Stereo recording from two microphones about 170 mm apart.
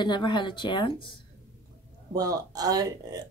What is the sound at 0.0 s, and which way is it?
Speech, 25° left (ahead or behind).